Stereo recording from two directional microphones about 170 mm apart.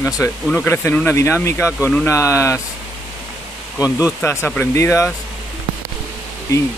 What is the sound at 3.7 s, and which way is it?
Speech, 10° right (ahead or behind).